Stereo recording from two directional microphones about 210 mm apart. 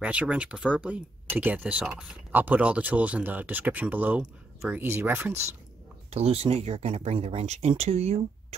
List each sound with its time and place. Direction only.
0.0 s speech: 5° right (ahead or behind)
6.0 s speech: 30° right (ahead or behind)